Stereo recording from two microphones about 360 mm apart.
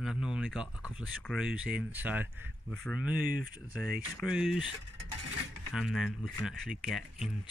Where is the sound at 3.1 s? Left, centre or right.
Right.